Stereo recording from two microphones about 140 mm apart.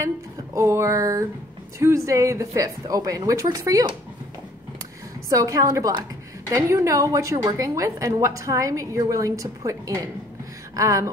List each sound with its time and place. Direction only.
0.6 s a woman's voice: 20° right (ahead or behind)
5.3 s a woman's voice: 25° right (ahead or behind)